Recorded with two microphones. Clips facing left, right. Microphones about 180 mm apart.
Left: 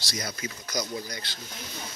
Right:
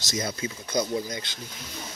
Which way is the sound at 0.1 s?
25° right (ahead or behind).